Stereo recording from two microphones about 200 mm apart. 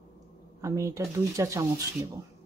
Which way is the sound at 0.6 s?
15° right (ahead or behind).